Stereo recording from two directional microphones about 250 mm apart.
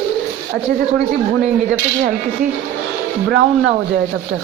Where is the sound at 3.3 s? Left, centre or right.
Right.